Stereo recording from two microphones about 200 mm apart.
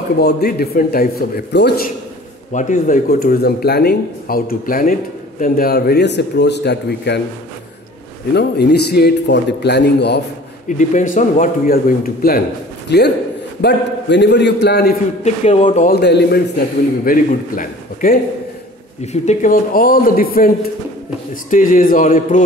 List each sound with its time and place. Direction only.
0.2 s speech: 50° left (ahead or behind)
2.5 s a man's voice: 40° left (ahead or behind); by 7.2 s 60° left (ahead or behind)
8.3 s a man's voice: 55° left (ahead or behind)
10.8 s a man's voice: 40° left (ahead or behind); by 15.0 s 55° left (ahead or behind)
15.2 s speech: 35° left (ahead or behind)
15.9 s speech: 55° left (ahead or behind); by 22.4 s 40° left (ahead or behind)